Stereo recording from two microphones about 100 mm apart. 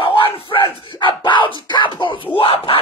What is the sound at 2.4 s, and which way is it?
Speech, 65° left (ahead or behind).